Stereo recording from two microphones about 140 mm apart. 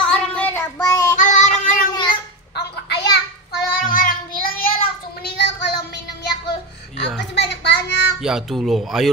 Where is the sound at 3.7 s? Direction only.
85° left.